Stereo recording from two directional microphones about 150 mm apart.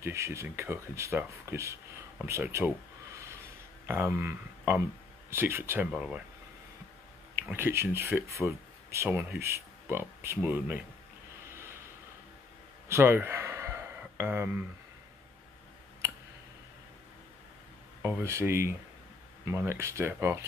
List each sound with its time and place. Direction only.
0.0 s speech: 20° right (ahead or behind)
3.8 s speech: 15° right (ahead or behind)
5.9 s speech: 5° right (ahead or behind)
7.4 s speech: 15° right (ahead or behind)
12.8 s a sound: 15° right (ahead or behind)
18.0 s speech: 15° right (ahead or behind)